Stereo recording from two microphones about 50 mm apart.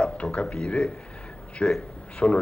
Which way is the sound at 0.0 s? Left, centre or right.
Left.